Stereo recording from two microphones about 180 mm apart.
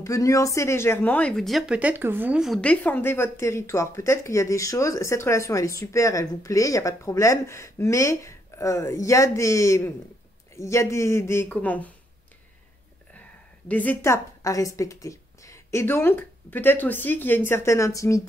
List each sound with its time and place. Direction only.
0.0 s speech: 15° left (ahead or behind)
13.7 s a woman's voice: 10° left (ahead or behind)